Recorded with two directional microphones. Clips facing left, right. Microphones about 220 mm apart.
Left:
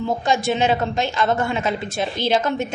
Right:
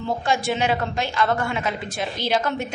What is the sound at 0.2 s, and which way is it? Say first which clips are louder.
A woman's voice: left 3 dB; 20° left (ahead or behind).